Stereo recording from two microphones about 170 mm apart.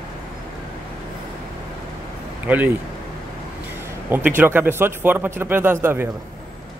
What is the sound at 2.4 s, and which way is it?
Speech, 10° right (ahead or behind).